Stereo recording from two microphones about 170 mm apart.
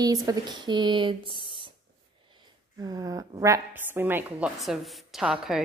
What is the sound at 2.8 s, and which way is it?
A woman's voice, 20° right (ahead or behind).